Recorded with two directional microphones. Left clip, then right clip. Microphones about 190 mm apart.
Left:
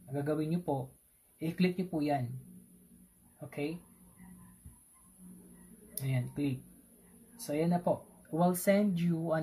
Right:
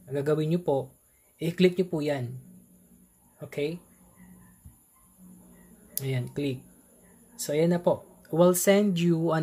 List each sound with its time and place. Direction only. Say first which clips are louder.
0.1 s speech: right 8 dB; 50° right (ahead or behind)
3.3 s speech: right 7 dB; 50° right (ahead or behind)
5.9 s speech: right 6 dB; 50° right (ahead or behind)